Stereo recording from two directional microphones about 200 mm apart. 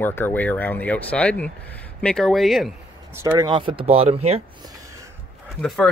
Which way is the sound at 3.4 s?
25° right (ahead or behind).